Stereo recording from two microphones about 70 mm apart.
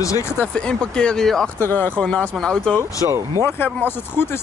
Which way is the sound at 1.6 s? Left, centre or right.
Left.